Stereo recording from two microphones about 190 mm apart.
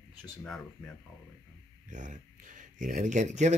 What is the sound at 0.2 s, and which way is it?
Speech, 5° left (ahead or behind).